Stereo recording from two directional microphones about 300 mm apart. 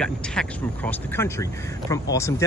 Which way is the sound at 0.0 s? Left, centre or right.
Centre.